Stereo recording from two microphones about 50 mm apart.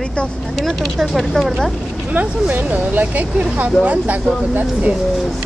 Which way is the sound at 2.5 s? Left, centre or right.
Right.